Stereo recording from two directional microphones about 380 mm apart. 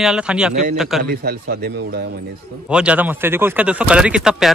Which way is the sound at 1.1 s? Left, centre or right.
Right.